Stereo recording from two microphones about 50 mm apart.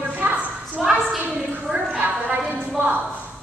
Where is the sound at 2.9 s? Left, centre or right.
Right.